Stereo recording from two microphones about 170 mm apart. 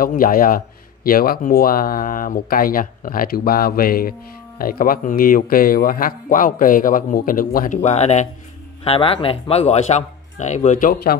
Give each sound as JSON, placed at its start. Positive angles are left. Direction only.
{"t": 0.0, "sound": "speech", "side_deg": 55}